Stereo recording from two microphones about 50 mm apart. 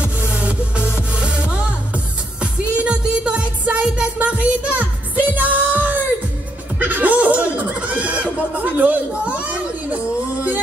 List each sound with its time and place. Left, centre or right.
0.3 s music: right
2.8 s music: right
6.8 s laughter: right